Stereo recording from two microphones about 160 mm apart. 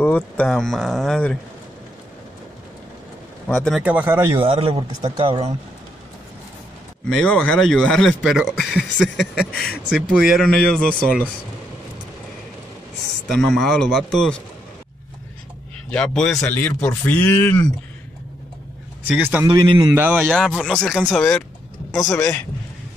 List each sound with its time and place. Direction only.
0.0 s speech: 10° left (ahead or behind)
3.4 s speech: 10° left (ahead or behind)
3.7 s speech: 10° right (ahead or behind)
4.2 s a man's voice: 35° right (ahead or behind)
7.1 s speech: 5° left (ahead or behind)
10.7 s speech: 5° left (ahead or behind)
13.3 s speech: centre (ahead or behind)
15.9 s speech: 5° left (ahead or behind)
19.0 s speech: 5° right (ahead or behind)
19.4 s speech: 30° right (ahead or behind)
20.0 s speech: 10° right (ahead or behind)
20.2 s speech: 5° left (ahead or behind)